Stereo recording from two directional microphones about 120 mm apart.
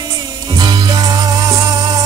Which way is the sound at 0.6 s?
40° right (ahead or behind).